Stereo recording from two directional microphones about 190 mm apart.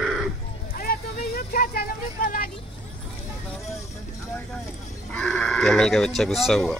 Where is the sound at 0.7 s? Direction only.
50° left (ahead or behind).